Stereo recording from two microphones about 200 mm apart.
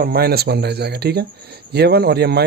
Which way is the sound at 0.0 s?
50° right (ahead or behind).